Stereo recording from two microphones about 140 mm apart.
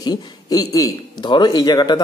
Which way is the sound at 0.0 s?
30° left (ahead or behind).